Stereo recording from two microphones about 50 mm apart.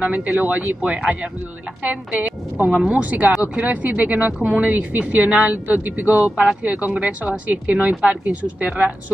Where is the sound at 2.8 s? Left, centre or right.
Right.